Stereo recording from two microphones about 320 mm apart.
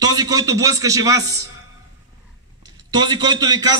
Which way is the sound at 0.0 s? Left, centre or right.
Centre.